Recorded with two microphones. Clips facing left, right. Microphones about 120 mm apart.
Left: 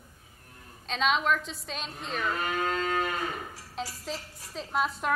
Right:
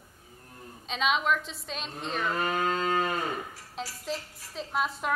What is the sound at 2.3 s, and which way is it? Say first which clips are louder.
Music: right 2 dB; 35° right (ahead or behind).